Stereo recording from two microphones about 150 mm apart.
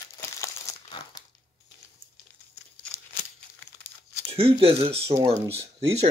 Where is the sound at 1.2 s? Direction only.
25° left (ahead or behind).